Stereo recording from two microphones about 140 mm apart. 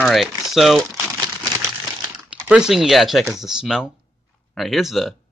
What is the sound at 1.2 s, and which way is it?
Crumpling, 30° right (ahead or behind).